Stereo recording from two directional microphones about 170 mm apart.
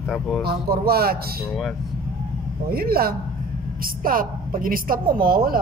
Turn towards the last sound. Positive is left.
turn(degrees=-60)  # may be behind; listen again after turning